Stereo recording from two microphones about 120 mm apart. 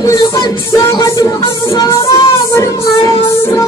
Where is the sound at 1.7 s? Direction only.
30° left (ahead or behind).